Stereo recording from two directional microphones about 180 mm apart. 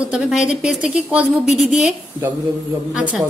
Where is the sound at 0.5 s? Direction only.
5° right (ahead or behind).